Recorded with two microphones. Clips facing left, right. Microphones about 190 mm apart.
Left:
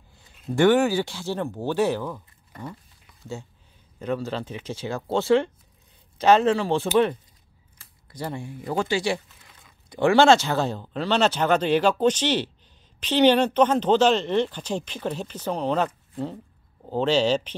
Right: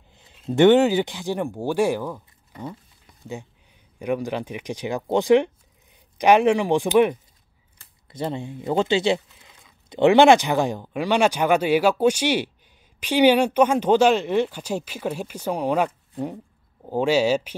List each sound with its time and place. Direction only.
0.1 s speech: 20° right (ahead or behind)
4.0 s speech: 15° right (ahead or behind)